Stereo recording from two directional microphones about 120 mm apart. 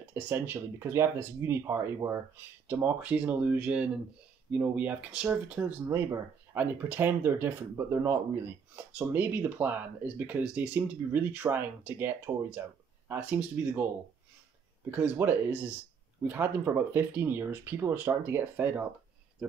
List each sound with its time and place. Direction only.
0.1 s speech: 15° right (ahead or behind)
14.9 s speech: 15° right (ahead or behind)